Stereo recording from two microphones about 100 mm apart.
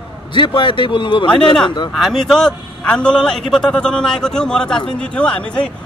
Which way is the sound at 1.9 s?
Centre (ahead or behind).